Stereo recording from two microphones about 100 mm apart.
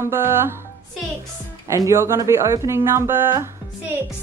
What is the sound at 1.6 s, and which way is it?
Speech, 30° right (ahead or behind).